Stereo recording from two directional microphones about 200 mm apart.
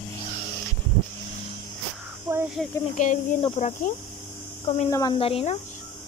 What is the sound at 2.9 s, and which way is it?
Speech, 40° left (ahead or behind).